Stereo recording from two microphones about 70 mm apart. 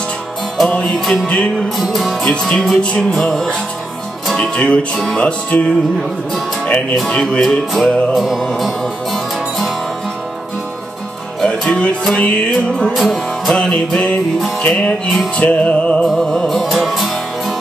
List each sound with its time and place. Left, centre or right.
0.7 s music: centre
1.8 s music: centre
6.6 s music: left
7.4 s music: centre
11.4 s music: centre
12.9 s music: centre
13.6 s music: centre
16.1 s music: centre